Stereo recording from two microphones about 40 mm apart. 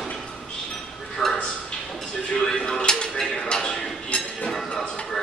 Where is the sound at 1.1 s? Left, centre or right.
Centre.